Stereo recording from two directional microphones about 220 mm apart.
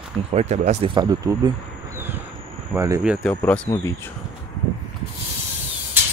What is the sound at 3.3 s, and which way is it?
Speech, 10° left (ahead or behind).